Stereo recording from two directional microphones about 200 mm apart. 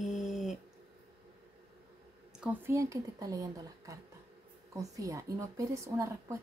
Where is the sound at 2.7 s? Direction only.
15° right (ahead or behind).